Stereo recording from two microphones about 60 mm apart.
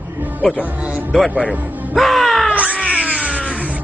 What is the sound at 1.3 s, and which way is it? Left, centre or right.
Speech, centre.